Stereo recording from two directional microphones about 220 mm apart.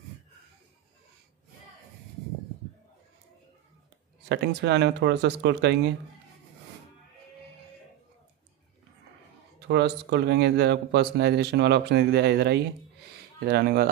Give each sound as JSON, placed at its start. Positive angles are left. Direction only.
{"t": 4.3, "sound": "speech", "side_deg": -50}
{"t": 9.6, "sound": "speech", "side_deg": -50}